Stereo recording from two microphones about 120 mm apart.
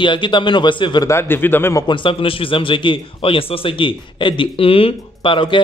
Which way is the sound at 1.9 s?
45° left (ahead or behind).